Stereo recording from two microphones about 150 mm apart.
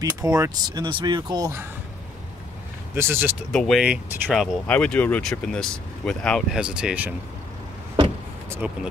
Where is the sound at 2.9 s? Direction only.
15° right (ahead or behind).